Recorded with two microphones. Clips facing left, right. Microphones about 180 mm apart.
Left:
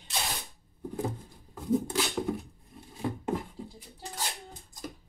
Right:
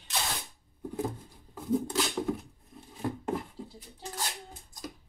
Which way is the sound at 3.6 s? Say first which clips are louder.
Left 1 dB; 15° left (ahead or behind).